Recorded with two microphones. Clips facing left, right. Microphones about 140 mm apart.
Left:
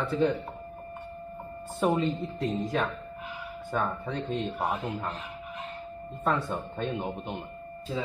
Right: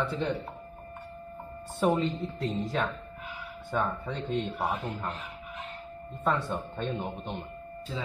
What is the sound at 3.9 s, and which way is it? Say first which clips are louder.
Speech: even; 10° left (ahead or behind).